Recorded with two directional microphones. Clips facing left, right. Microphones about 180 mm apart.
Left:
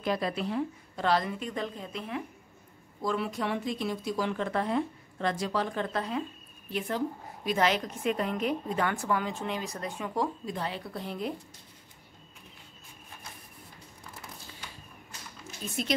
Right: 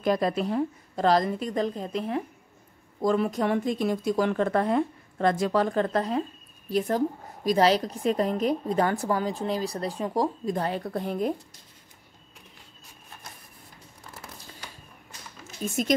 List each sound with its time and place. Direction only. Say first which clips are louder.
0.0 s a woman's voice: right 6 dB; 45° right (ahead or behind)
7.4 s a woman's voice: right 6 dB; 35° right (ahead or behind)
15.6 s speech: right 6 dB; 45° right (ahead or behind)